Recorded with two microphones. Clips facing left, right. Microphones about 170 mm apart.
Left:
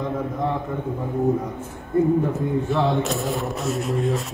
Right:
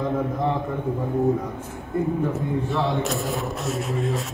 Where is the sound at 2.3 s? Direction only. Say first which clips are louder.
Left 2 dB; centre (ahead or behind).